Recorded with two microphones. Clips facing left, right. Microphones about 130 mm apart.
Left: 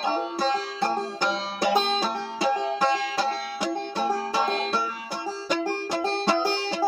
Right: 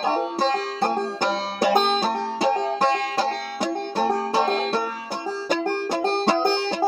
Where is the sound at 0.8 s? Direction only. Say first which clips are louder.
Right 3 dB; 50° right (ahead or behind).